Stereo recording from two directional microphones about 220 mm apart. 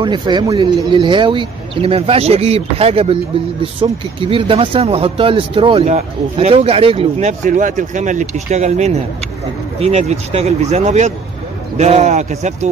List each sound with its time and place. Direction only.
0.0 s speech: 20° right (ahead or behind)